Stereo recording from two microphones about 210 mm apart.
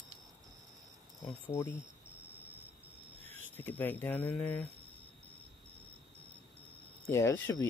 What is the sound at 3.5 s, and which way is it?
Speech, 10° left (ahead or behind).